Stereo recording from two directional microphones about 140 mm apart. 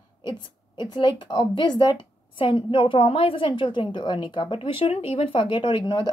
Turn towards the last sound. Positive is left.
turn(degrees=35)  # may be behind; listen again after turning